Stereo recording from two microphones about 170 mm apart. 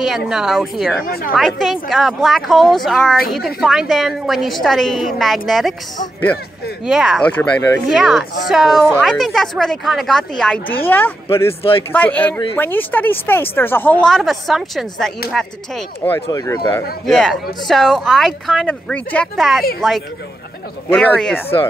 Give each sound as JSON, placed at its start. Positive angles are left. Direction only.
{"t": 0.0, "sound": "a woman's voice", "side_deg": 0}
{"t": 1.0, "sound": "a woman's voice", "side_deg": 60}
{"t": 1.3, "sound": "a woman's voice", "side_deg": 0}
{"t": 6.9, "sound": "a woman's voice", "side_deg": 0}
{"t": 7.3, "sound": "speech", "side_deg": 10}
{"t": 7.9, "sound": "a woman's voice", "side_deg": 0}
{"t": 16.3, "sound": "speech", "side_deg": 20}
{"t": 17.0, "sound": "a woman's voice", "side_deg": 0}
{"t": 20.9, "sound": "speech", "side_deg": 5}